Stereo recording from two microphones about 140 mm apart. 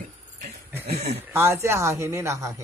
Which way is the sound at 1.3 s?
15° right (ahead or behind).